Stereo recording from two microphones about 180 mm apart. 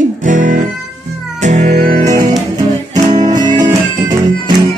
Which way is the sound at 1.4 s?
40° right (ahead or behind).